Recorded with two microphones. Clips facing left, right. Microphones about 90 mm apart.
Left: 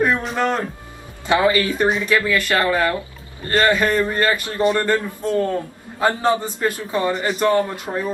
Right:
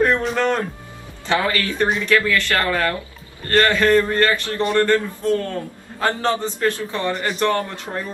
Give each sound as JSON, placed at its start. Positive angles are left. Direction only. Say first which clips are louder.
{"t": 0.0, "sound": "music", "louder": "right 1 dB", "side_deg": 10}
{"t": 1.2, "sound": "a man's voice", "louder": "left 4 dB", "side_deg": 15}
{"t": 7.2, "sound": "speech", "louder": "left 1 dB", "side_deg": 5}
{"t": 7.4, "sound": "a man's voice", "louder": "left 4 dB", "side_deg": 15}